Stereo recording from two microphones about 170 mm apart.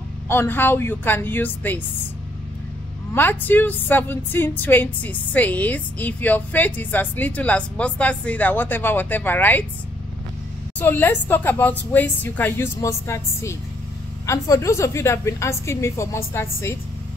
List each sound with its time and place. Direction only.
0.3 s a woman's voice: 10° left (ahead or behind)
3.2 s a woman's voice: 10° left (ahead or behind)
10.8 s a woman's voice: 10° left (ahead or behind)